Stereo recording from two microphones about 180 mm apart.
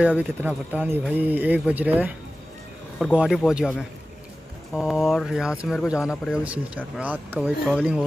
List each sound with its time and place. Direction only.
0.0 s speech: 5° right (ahead or behind)
3.2 s speech: 5° right (ahead or behind)
4.7 s speech: 5° right (ahead or behind)